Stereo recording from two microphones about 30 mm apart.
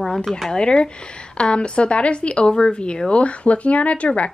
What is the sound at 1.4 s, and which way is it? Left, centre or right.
Speech, left.